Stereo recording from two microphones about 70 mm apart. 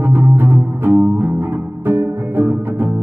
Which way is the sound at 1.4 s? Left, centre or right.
Right.